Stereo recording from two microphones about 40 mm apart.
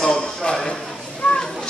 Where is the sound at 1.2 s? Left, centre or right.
Centre.